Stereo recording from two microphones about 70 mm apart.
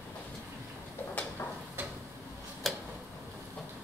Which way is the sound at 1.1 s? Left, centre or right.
Left.